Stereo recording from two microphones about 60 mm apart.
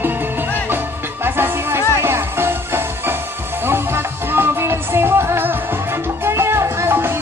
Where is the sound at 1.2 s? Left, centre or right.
Right.